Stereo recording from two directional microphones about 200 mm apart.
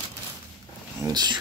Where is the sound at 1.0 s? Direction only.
20° right (ahead or behind).